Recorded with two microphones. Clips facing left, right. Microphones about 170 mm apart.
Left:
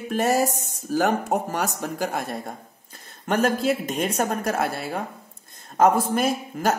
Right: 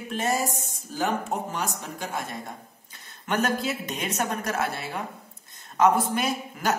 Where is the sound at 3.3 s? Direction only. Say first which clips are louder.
Left 5 dB; 35° left (ahead or behind).